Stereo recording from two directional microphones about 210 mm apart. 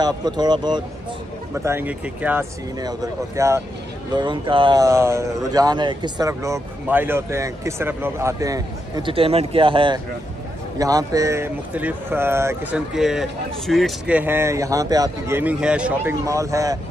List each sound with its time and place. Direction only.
0.0 s speech: 20° right (ahead or behind)